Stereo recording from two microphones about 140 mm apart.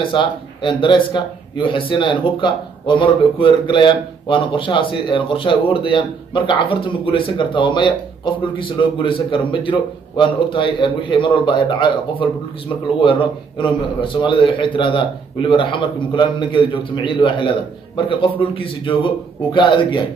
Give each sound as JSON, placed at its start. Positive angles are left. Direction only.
{"t": 0.0, "sound": "a man's voice", "side_deg": 35}